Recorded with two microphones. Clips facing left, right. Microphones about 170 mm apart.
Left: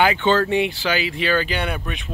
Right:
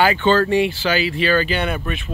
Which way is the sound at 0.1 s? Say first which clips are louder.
Right 2 dB; 20° left (ahead or behind).